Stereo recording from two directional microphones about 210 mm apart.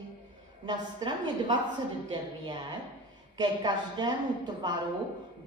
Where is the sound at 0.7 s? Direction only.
20° right (ahead or behind).